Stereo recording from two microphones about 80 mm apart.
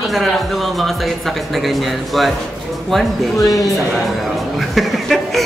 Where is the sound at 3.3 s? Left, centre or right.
Left.